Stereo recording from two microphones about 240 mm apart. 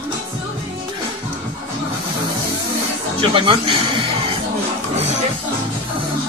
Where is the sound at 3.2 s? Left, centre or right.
Right.